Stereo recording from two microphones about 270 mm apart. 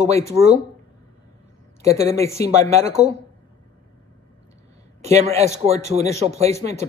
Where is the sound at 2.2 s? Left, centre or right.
Centre.